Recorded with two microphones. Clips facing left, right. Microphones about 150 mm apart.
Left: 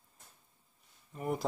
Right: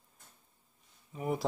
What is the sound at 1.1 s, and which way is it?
Speech, centre (ahead or behind).